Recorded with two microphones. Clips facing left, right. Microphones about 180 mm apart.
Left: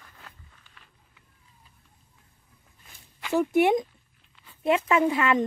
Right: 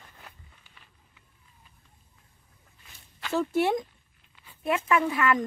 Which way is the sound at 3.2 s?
15° left (ahead or behind).